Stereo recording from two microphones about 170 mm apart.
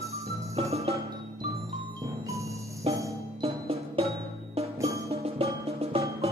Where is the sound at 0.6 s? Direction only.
35° right (ahead or behind).